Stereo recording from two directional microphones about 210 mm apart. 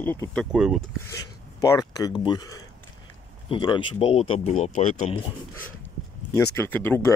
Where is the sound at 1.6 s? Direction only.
15° left (ahead or behind).